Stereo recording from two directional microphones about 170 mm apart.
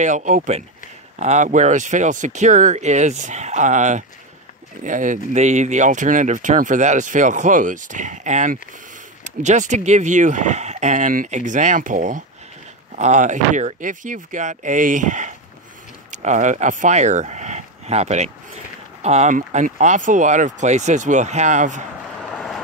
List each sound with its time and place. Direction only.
0.0 s speech: 45° right (ahead or behind)